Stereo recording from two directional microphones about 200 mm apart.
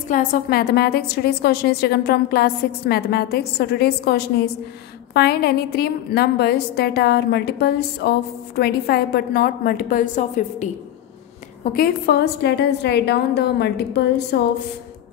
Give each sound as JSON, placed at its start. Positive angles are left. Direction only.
{"t": 0.1, "sound": "a woman's voice", "side_deg": 45}
{"t": 11.6, "sound": "a woman's voice", "side_deg": 50}